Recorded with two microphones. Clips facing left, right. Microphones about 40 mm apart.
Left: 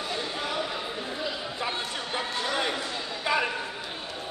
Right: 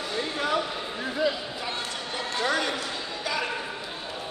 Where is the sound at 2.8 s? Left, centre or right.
Left.